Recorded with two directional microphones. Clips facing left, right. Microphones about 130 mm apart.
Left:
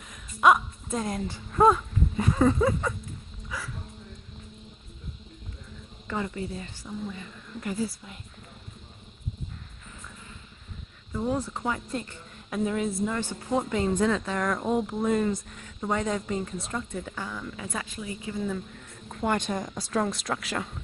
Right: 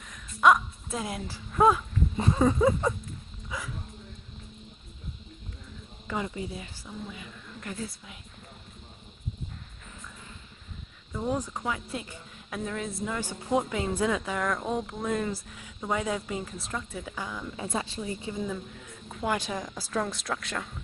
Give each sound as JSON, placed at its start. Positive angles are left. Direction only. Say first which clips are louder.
{"t": 0.0, "sound": "a sound", "louder": "left 1 dB", "side_deg": 0}
{"t": 2.3, "sound": "speech", "louder": "even", "side_deg": -15}
{"t": 3.4, "sound": "dog", "louder": "even", "side_deg": -20}
{"t": 6.0, "sound": "speech", "louder": "left 1 dB", "side_deg": -15}
{"t": 11.2, "sound": "speech", "louder": "left 1 dB", "side_deg": -15}
{"t": 13.2, "sound": "speech", "louder": "even", "side_deg": -10}
{"t": 17.6, "sound": "speech", "louder": "right 3 dB", "side_deg": -30}
{"t": 19.1, "sound": "speech", "louder": "left 3 dB", "side_deg": -5}